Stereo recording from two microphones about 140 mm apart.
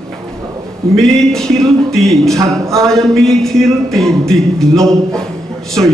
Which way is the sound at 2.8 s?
Centre (ahead or behind).